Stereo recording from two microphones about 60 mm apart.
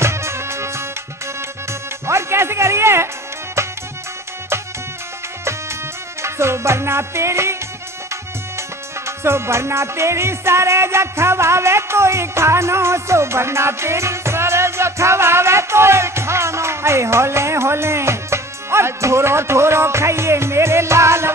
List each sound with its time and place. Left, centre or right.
0.0 s music: right
5.4 s music: right